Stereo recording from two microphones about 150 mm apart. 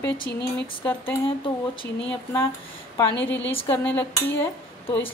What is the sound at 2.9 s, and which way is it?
Speech, 15° left (ahead or behind).